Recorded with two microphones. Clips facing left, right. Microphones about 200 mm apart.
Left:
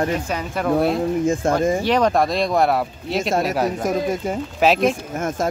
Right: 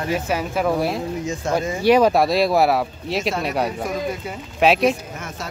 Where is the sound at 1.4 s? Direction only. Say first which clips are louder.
Right 1 dB; 50° left (ahead or behind).